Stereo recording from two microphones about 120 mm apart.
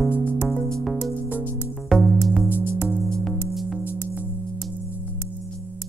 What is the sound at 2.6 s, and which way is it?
Music, 20° left (ahead or behind).